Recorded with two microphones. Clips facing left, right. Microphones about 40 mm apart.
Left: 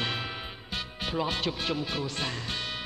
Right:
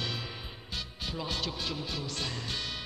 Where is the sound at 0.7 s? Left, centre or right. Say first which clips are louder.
Left 7 dB; left.